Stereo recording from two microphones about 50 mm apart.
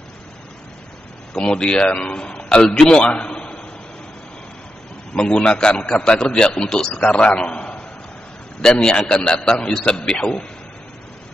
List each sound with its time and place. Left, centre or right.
1.3 s a man's voice: left
5.1 s a man's voice: centre
7.0 s a man's voice: left
8.8 s a man's voice: centre